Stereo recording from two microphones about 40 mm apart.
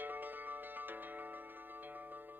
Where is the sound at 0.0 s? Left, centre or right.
Right.